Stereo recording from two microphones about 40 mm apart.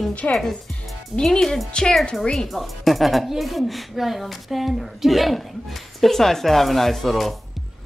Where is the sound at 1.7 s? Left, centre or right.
Left.